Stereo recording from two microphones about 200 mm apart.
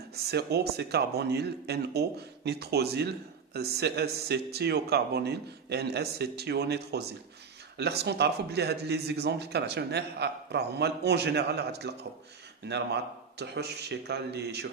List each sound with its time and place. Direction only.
0.1 s speech: 55° right (ahead or behind)